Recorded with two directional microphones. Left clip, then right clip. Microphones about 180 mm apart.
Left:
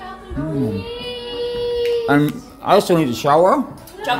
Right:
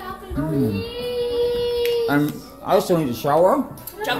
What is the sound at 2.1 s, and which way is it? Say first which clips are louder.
Speech: left 4 dB; 55° left (ahead or behind).